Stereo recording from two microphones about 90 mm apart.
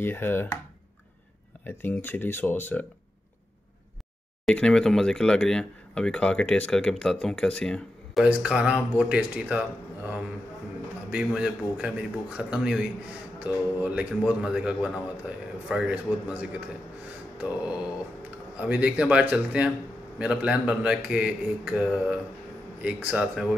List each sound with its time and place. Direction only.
0.0 s speech: 25° left (ahead or behind)
1.7 s speech: 25° left (ahead or behind)
4.5 s speech: 10° left (ahead or behind)
8.2 s a man's voice: 10° right (ahead or behind)
18.6 s a man's voice: 15° right (ahead or behind)